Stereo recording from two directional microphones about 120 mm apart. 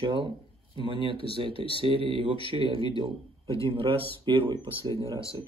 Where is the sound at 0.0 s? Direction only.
45° right (ahead or behind).